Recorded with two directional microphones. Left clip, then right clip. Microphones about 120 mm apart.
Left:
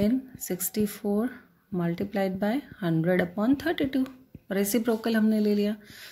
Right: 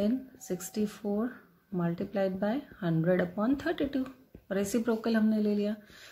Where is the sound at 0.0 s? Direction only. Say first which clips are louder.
Left 4 dB; 30° left (ahead or behind).